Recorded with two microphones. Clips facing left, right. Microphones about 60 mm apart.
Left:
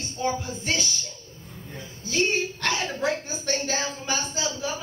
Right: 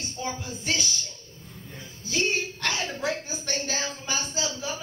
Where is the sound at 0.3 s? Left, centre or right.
Left.